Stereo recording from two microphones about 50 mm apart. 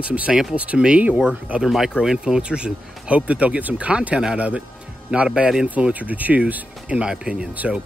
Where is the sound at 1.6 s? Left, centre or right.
Centre; by 6.4 s right.